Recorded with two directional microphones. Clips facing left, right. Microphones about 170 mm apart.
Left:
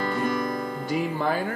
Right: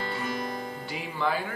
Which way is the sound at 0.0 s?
50° left (ahead or behind).